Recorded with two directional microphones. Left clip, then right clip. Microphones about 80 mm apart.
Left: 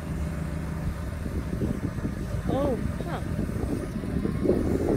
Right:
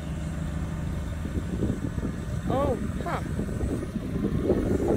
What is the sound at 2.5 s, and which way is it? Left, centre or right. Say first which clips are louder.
Vehicle: right 1 dB; centre.